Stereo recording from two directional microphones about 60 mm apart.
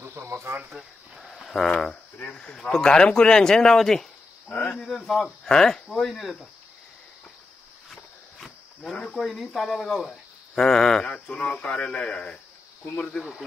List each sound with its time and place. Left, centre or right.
0.0 s cricket: right
0.7 s cricket: centre
1.3 s speech: centre
7.9 s walk: centre
9.1 s speech: centre